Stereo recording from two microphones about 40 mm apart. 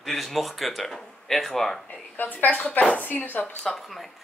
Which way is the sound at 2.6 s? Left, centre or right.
Left.